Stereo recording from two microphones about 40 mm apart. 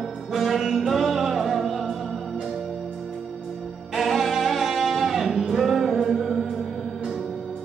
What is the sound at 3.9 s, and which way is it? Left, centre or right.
Music, centre.